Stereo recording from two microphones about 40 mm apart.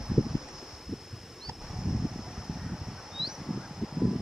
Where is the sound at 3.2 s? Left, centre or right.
Centre.